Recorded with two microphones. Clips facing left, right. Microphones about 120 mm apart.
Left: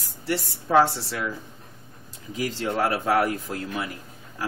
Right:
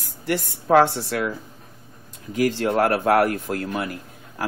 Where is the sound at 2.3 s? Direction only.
60° right (ahead or behind).